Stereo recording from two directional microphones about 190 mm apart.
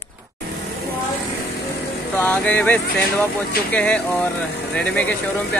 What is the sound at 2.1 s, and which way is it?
Speech, 5° left (ahead or behind).